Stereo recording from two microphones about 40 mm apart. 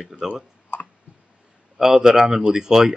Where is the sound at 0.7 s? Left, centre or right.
Left.